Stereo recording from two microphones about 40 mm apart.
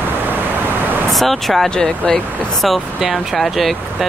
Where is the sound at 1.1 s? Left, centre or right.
Centre.